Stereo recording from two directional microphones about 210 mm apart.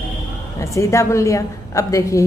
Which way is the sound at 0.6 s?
15° left (ahead or behind).